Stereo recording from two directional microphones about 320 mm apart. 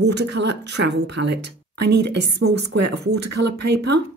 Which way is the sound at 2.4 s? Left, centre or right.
Right.